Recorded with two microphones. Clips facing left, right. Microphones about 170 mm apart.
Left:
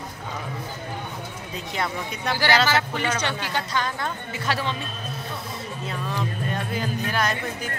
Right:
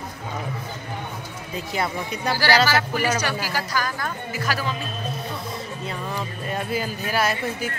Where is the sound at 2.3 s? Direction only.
20° left (ahead or behind).